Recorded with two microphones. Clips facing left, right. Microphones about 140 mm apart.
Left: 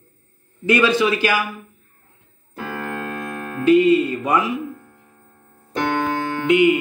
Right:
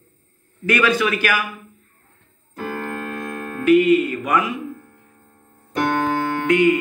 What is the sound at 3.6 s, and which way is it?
Speech, 30° left (ahead or behind).